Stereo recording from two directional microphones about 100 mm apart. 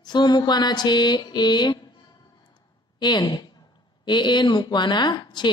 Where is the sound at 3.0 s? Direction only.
45° left (ahead or behind).